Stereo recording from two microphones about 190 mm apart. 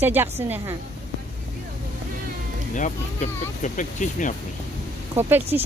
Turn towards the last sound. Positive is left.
turn(degrees=-10)  # may be behind; listen again after turning